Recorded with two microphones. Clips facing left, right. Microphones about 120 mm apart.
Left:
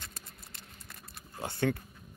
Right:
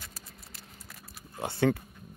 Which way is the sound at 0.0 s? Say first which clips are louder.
Even; 5° right (ahead or behind).